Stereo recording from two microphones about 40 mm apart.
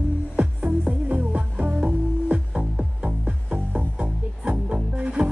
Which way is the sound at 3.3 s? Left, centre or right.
Right.